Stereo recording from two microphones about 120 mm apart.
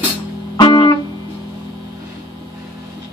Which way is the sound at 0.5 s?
35° left (ahead or behind).